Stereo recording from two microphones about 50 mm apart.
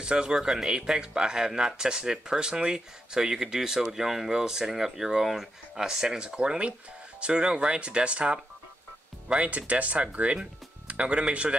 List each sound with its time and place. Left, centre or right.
0.0 s speech: centre
9.5 s speech: right